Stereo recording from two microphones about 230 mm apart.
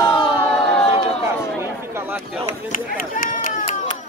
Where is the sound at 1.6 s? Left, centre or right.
Centre.